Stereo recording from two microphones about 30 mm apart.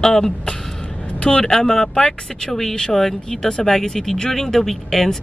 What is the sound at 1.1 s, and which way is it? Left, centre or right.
Speech, left.